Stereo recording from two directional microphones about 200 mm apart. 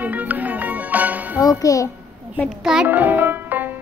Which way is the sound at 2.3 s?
Centre (ahead or behind).